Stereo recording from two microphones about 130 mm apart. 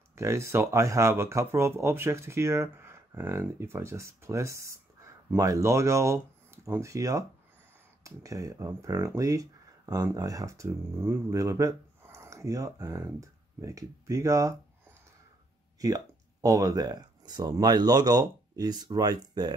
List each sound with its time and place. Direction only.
0.1 s speech: 20° right (ahead or behind)